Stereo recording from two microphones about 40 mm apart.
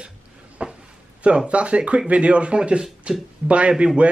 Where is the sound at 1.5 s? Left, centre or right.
Right.